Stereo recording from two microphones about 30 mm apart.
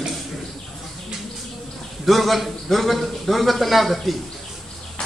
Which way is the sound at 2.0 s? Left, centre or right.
Centre.